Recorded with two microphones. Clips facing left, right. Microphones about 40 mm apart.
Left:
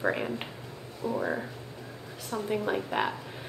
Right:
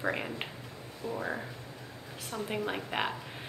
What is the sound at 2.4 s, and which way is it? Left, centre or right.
Speech, centre.